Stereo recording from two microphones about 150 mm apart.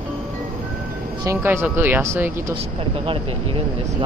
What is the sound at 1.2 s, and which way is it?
Speech, 20° right (ahead or behind).